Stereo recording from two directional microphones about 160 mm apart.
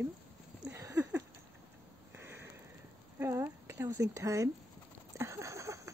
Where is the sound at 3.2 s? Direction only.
15° right (ahead or behind).